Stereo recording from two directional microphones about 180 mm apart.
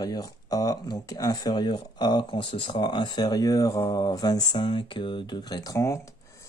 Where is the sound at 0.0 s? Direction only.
20° left (ahead or behind).